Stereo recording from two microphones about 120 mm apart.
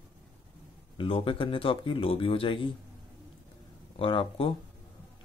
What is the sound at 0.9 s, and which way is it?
Speech, 45° left (ahead or behind).